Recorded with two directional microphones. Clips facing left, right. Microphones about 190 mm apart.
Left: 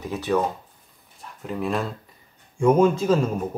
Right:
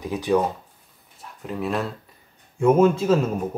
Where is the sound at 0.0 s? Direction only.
15° right (ahead or behind).